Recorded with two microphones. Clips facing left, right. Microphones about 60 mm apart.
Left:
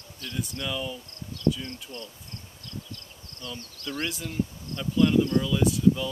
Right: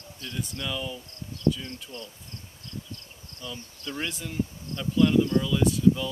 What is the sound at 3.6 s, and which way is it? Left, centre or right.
Speech, centre.